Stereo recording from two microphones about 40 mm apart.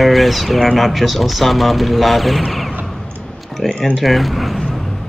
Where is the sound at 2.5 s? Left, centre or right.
Centre.